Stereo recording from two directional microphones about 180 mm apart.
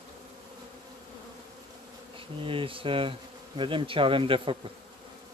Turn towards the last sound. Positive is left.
turn(degrees=-30)  # may be behind; listen again after turning